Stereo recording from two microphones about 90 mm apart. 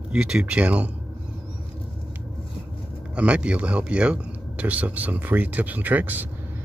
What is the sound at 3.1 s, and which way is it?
Speech, 15° right (ahead or behind).